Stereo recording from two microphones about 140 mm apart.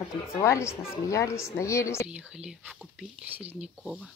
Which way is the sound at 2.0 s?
5° right (ahead or behind).